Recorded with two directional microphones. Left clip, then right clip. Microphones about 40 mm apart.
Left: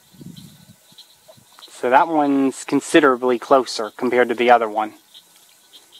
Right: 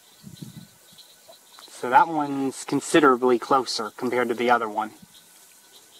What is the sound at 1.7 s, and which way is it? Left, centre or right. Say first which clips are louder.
Speech: left 4 dB; left.